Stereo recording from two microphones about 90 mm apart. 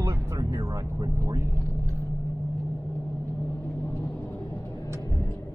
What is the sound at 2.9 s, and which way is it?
Vehicle, 20° left (ahead or behind).